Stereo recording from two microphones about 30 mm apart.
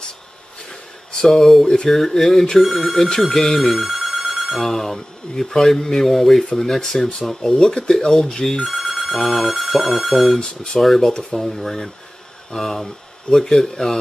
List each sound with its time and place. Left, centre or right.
1.3 s speech: centre
4.6 s speech: centre
8.5 s speech: centre